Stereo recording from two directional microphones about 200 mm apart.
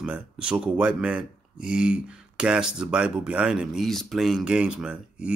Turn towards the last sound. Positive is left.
turn(degrees=-5)  # may be behind; listen again after turning